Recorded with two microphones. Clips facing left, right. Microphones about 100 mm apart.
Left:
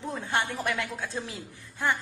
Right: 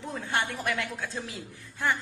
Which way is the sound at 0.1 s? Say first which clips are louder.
Left 1 dB; 25° left (ahead or behind).